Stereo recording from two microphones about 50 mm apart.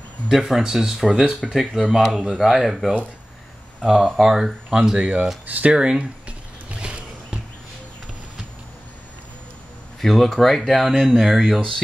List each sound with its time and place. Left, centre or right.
0.3 s speech: centre
4.9 s speech: right
5.5 s a sound: right
9.9 s speech: centre